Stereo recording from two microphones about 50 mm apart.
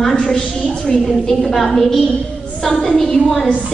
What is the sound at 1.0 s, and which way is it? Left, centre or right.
A woman's voice, centre.